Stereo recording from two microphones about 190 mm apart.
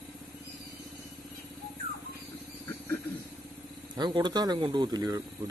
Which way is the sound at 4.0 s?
25° right (ahead or behind).